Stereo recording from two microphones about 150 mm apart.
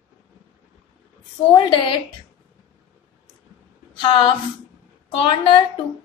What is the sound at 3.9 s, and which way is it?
A woman's voice, 35° left (ahead or behind).